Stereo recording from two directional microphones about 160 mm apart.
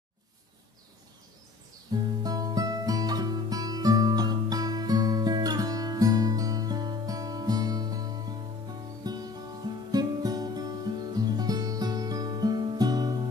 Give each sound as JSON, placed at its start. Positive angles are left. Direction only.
{"t": 2.2, "sound": "music", "side_deg": -25}